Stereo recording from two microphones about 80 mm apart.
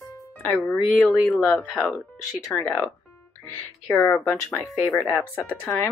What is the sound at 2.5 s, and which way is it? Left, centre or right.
Speech, left.